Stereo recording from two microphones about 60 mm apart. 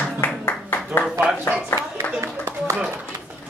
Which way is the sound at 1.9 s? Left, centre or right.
Right.